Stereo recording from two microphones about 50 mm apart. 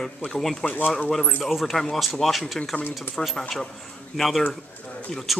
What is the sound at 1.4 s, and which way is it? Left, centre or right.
A man's voice, centre.